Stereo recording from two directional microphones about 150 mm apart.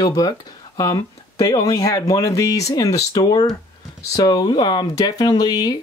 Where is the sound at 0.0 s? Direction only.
25° left (ahead or behind).